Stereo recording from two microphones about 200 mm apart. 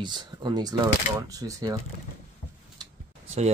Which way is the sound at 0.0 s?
20° right (ahead or behind).